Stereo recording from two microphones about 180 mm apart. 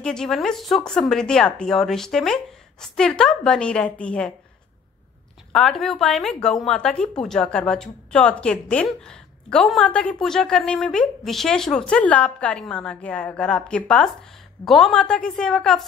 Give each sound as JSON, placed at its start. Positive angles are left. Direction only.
{"t": 0.0, "sound": "a woman's voice", "side_deg": 5}
{"t": 5.5, "sound": "a woman's voice", "side_deg": 5}